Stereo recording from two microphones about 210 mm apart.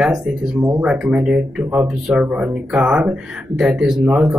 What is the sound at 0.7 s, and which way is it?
Speech, 10° right (ahead or behind).